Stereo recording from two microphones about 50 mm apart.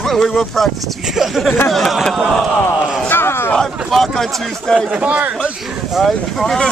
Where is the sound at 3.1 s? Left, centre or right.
Left.